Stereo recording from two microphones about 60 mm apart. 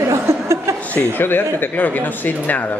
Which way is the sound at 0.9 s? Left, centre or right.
Left.